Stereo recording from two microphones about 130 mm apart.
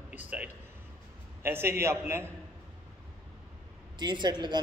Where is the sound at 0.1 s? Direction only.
10° right (ahead or behind).